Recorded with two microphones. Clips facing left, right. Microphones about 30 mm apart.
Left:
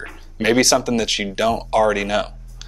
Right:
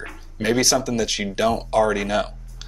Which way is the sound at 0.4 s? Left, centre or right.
Left.